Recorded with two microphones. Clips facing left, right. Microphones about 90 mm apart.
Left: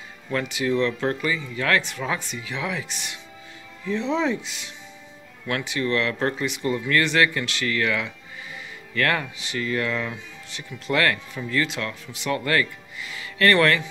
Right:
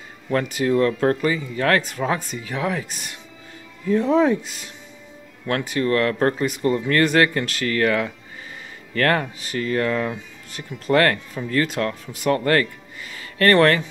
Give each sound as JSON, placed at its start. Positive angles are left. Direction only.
{"t": 0.3, "sound": "speech", "side_deg": -40}